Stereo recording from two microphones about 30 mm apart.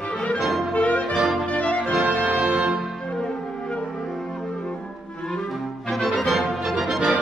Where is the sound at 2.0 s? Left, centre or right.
Right.